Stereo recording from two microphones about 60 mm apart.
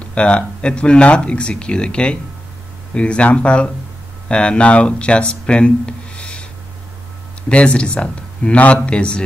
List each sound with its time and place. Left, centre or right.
0.0 s a man's voice: centre
7.4 s a man's voice: centre